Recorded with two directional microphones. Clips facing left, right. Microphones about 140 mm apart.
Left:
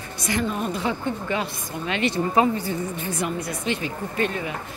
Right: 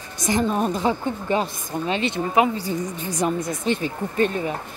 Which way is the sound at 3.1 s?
45° right (ahead or behind).